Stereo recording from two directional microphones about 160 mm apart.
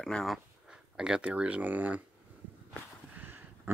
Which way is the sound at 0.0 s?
Centre (ahead or behind).